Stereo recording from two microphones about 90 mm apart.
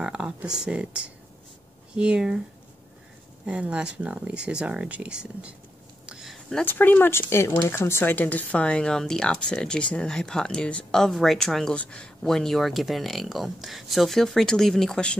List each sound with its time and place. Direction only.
0.0 s speech: 10° right (ahead or behind)
3.4 s speech: 15° right (ahead or behind)
6.0 s a sound: 5° right (ahead or behind)
6.6 s speech: 20° left (ahead or behind)